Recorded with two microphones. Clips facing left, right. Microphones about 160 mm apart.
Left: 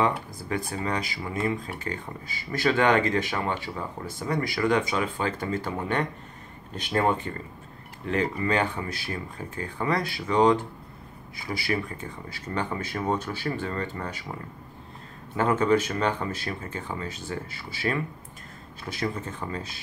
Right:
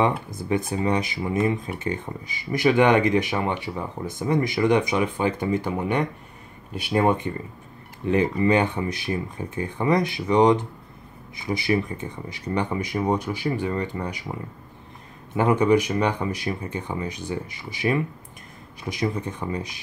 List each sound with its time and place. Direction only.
0.0 s speech: 20° right (ahead or behind)
15.3 s speech: 15° right (ahead or behind)